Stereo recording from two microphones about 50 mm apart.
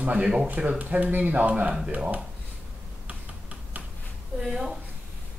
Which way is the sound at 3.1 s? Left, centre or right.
Right.